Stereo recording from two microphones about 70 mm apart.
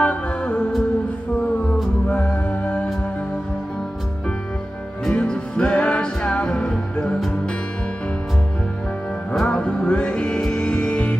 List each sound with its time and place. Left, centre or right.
0.0 s music: centre
2.0 s music: left
5.0 s music: centre
9.3 s music: centre